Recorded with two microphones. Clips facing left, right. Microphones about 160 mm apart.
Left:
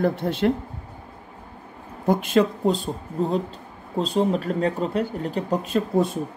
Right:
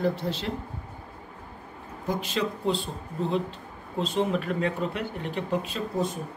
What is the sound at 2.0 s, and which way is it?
Speech, 55° left (ahead or behind).